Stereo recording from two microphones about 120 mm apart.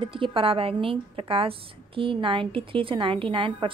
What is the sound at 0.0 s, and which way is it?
A woman's voice, 45° right (ahead or behind).